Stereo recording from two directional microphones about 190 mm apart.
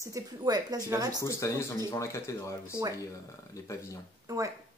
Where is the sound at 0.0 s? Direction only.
20° right (ahead or behind).